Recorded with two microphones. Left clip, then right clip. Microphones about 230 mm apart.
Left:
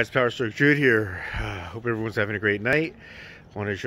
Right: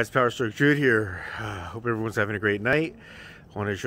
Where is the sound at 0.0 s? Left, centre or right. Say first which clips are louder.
Even; centre.